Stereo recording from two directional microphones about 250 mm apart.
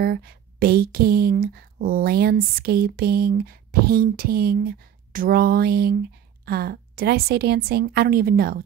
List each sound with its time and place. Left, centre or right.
0.0 s speech: right